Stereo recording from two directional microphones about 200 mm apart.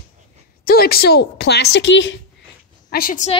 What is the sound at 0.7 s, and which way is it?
A woman's voice, 50° left (ahead or behind).